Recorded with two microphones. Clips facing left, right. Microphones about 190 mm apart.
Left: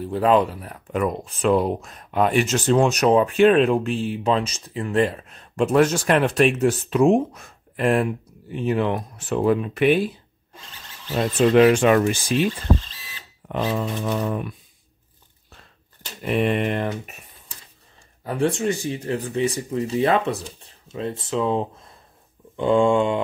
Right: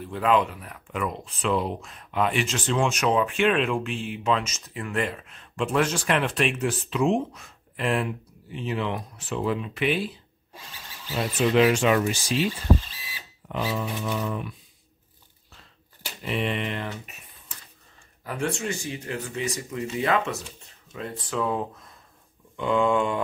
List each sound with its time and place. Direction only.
0.0 s speech: 35° left (ahead or behind); by 12.4 s 55° left (ahead or behind)
13.5 s speech: 50° left (ahead or behind)
16.2 s speech: 50° left (ahead or behind)
18.2 s speech: 30° left (ahead or behind)
22.6 s a sound: 30° left (ahead or behind)